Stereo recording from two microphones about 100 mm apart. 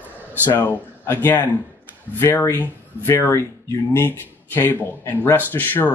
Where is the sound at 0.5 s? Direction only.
20° left (ahead or behind).